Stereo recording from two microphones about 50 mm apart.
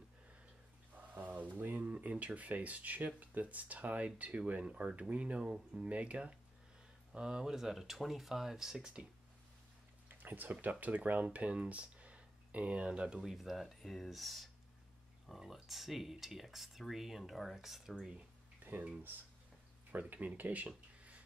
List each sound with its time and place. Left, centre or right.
0.9 s a sound: right
3.2 s speech: right
4.6 s speech: centre
5.9 s speech: right
7.1 s speech: centre
10.0 s speech: right
13.2 s speech: centre
18.6 s a sound: right
19.9 s speech: right